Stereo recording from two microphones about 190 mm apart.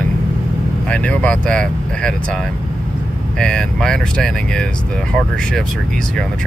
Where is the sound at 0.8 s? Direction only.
5° left (ahead or behind).